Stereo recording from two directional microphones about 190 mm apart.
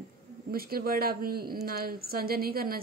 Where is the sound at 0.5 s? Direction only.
50° right (ahead or behind).